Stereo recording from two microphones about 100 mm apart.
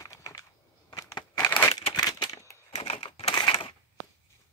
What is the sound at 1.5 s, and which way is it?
Crumpling, 20° left (ahead or behind).